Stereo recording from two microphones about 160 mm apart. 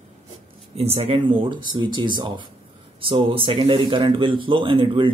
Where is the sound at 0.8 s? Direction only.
40° right (ahead or behind).